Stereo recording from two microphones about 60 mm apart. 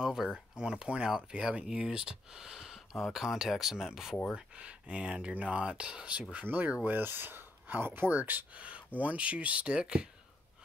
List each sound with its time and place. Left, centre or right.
0.0 s speech: centre
4.4 s speech: centre
6.4 s speech: right